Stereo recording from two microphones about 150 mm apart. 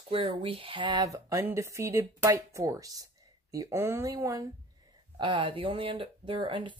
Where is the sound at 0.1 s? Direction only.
35° right (ahead or behind); by 4.5 s 20° right (ahead or behind).